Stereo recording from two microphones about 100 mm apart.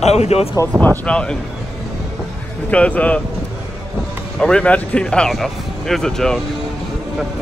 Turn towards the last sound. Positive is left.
turn(degrees=5)  # may be behind; listen again after turning